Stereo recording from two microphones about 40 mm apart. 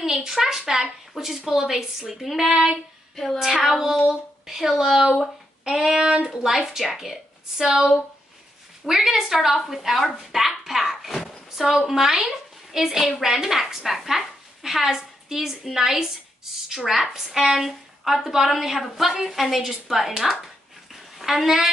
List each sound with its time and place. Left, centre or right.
0.0 s a woman's voice: centre
2.5 s a woman's voice: centre
5.6 s child singing: centre
5.9 s speech: right
6.2 s a woman's voice: centre
8.8 s a woman's voice: centre
10.6 s a sound: centre
11.5 s a woman's voice: centre
20.9 s a sound: centre